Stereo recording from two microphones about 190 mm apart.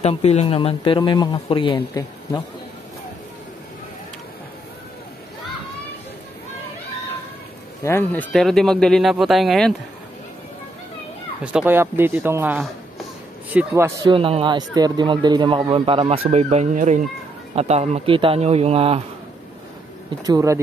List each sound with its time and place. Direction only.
0.0 s a man's voice: 35° left (ahead or behind)
7.8 s speech: 10° left (ahead or behind)
11.5 s speech: 10° right (ahead or behind)
14.1 s speech: 30° right (ahead or behind)
20.2 s speech: 15° right (ahead or behind)